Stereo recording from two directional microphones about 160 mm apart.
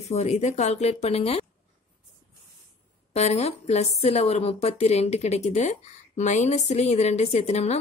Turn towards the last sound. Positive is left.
turn(degrees=40)  # may be behind; listen again after turning